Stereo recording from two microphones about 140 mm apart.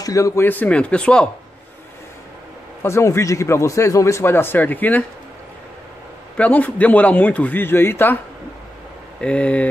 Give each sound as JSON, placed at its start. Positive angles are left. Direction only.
{"t": 0.0, "sound": "a man's voice", "side_deg": 25}
{"t": 2.8, "sound": "a man's voice", "side_deg": 20}
{"t": 6.3, "sound": "a man's voice", "side_deg": 10}
{"t": 9.2, "sound": "a man's voice", "side_deg": 10}